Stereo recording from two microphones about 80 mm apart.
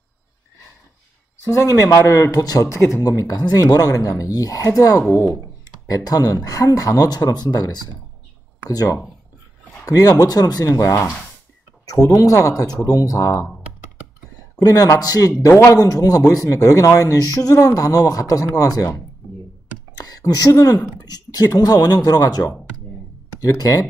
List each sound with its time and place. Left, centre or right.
1.4 s speech: left
2.3 s speech: left
2.7 s speech: left
3.1 s speech: left
14.6 s speech: left
20.0 s speech: left